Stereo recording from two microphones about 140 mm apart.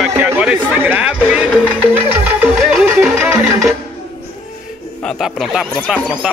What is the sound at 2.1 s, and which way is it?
Music, 15° right (ahead or behind).